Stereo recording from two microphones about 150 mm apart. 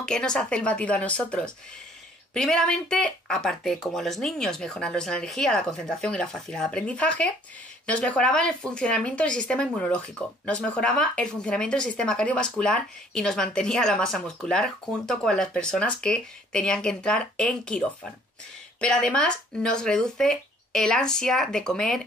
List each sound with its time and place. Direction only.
0.0 s speech: 5° left (ahead or behind)